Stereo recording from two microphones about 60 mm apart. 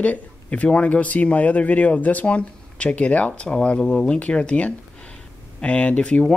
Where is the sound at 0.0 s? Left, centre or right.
Left.